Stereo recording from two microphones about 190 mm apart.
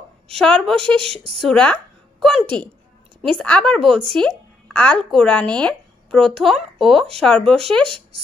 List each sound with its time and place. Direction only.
0.4 s speech: centre (ahead or behind)
0.7 s speech: 30° right (ahead or behind)
1.4 s a woman's voice: 5° left (ahead or behind)